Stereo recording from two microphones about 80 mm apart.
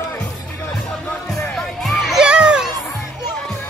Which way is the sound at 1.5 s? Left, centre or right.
Centre.